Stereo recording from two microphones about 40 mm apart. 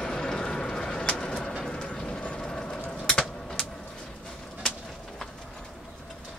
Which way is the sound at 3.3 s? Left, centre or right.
Centre.